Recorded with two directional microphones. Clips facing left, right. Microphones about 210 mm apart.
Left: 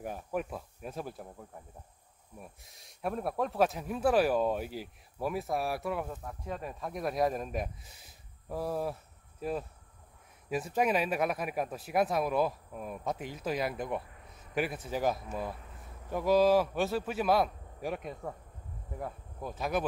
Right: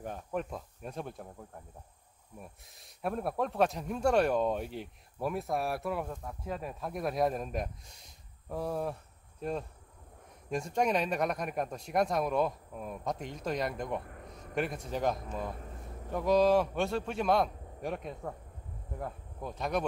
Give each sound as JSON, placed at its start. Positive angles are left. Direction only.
{"t": 0.0, "sound": "speech", "side_deg": 5}
{"t": 14.0, "sound": "a sound", "side_deg": -55}
{"t": 14.5, "sound": "speech", "side_deg": 5}